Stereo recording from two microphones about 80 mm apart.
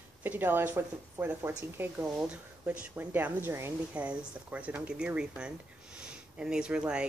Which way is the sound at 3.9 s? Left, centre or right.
Centre.